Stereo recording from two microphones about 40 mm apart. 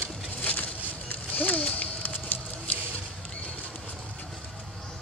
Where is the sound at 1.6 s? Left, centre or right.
Left.